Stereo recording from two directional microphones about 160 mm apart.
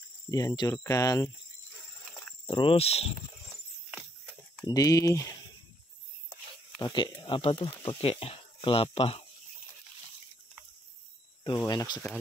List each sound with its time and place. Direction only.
0.3 s speech: 20° left (ahead or behind)
2.4 s speech: 30° left (ahead or behind)
4.6 s speech: 20° left (ahead or behind)
6.8 s speech: 25° left (ahead or behind)
11.4 s speech: 25° left (ahead or behind)